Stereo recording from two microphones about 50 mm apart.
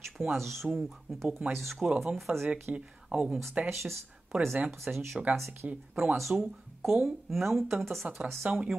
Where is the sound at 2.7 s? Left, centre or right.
Right.